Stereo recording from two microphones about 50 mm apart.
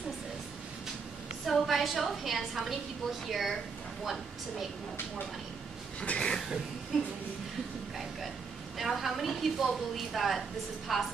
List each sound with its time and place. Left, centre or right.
1.4 s a woman's voice: centre
5.9 s speech: left
8.7 s a woman's voice: centre